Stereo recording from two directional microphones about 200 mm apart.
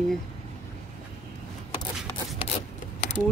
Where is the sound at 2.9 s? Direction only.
40° left (ahead or behind).